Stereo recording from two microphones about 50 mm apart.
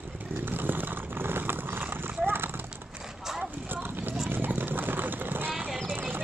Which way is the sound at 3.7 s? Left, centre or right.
Right.